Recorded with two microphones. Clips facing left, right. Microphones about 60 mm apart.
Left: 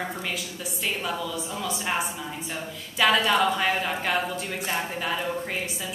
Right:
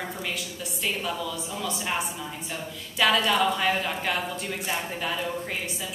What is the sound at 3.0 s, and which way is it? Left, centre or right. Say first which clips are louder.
A woman's voice: left 1 dB; centre.